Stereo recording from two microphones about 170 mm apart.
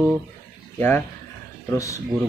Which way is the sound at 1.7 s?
20° left (ahead or behind).